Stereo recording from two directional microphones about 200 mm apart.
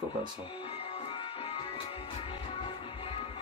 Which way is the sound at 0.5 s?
30° left (ahead or behind).